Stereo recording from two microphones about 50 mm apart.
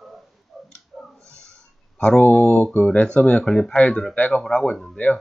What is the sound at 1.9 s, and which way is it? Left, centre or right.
Speech, centre.